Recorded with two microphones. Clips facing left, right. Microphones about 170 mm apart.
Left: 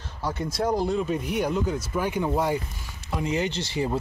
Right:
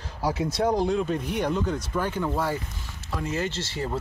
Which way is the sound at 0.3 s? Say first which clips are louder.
Right 1 dB; 5° right (ahead or behind).